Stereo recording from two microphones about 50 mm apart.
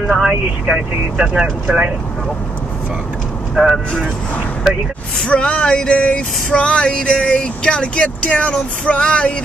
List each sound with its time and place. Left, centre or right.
0.0 s speech: centre
0.3 s speech: centre
3.5 s speech: centre
5.2 s a sound: left